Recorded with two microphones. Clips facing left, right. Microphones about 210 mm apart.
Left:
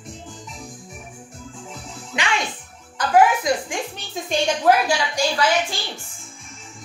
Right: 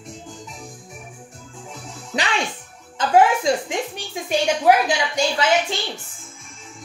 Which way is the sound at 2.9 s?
25° right (ahead or behind).